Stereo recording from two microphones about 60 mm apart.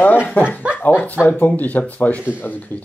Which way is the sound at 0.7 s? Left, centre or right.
Left.